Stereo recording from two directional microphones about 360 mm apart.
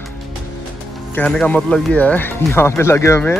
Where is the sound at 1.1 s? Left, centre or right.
Centre.